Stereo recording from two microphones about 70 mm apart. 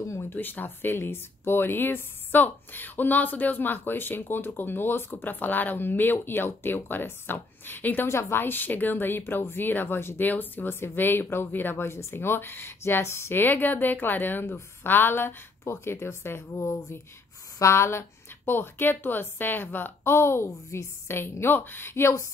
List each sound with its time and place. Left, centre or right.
0.2 s speech: left
8.1 s speech: left